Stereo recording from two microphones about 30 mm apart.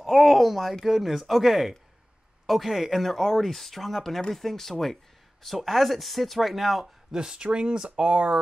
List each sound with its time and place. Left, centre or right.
0.0 s a sound: centre
0.8 s speech: centre
7.1 s speech: right
7.9 s speech: right